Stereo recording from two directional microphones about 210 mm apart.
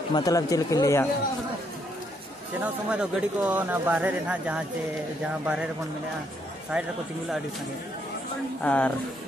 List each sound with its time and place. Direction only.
0.1 s speech: 15° left (ahead or behind)
2.6 s speech: 5° right (ahead or behind)
6.7 s speech: 5° right (ahead or behind)
8.6 s speech: 5° left (ahead or behind)